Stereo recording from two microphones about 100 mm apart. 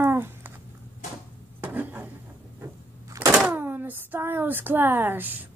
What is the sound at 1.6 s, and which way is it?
Dishes, 20° right (ahead or behind).